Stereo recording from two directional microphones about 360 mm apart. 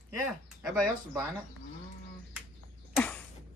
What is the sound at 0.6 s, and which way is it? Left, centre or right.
Speech, centre.